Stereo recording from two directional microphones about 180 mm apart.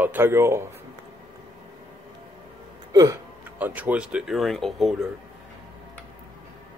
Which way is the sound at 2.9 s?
20° right (ahead or behind).